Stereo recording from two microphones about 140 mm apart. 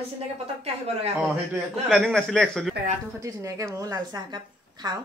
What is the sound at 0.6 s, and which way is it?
Speech, 50° right (ahead or behind).